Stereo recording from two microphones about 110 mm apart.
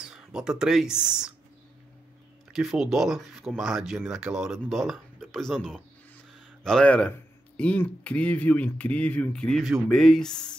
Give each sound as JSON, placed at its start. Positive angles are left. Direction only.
{"t": 0.0, "sound": "speech", "side_deg": -5}
{"t": 2.5, "sound": "speech", "side_deg": -5}